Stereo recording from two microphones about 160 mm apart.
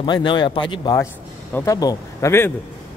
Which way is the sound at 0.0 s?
30° left (ahead or behind).